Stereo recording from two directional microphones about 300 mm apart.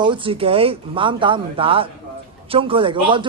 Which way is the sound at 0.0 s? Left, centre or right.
Centre.